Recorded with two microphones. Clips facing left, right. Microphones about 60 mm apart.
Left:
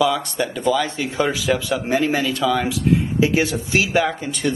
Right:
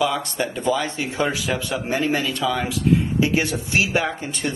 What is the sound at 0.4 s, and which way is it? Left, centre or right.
Speech, centre.